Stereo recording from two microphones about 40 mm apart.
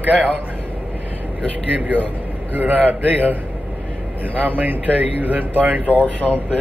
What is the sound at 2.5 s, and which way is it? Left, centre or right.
Speech, right.